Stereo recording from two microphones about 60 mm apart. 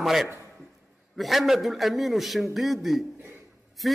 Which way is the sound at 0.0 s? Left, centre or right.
Centre.